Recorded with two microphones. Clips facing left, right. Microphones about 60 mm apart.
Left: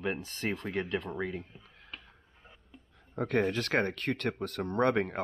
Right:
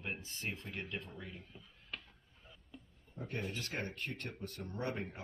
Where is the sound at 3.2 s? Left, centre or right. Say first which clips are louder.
Left 13 dB; left.